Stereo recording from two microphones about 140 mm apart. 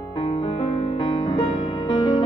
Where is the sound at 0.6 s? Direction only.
40° left (ahead or behind).